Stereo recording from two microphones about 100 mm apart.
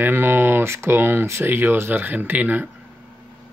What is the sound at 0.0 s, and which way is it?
Speech, 20° right (ahead or behind).